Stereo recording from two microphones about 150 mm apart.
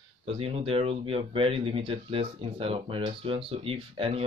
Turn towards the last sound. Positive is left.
turn(degrees=-40)  # may be behind; listen again after turning